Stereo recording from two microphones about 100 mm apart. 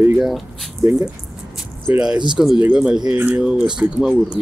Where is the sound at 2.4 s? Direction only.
20° right (ahead or behind).